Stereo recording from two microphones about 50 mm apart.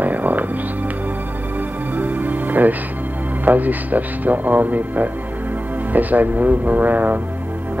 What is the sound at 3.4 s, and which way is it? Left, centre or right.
Speech, right.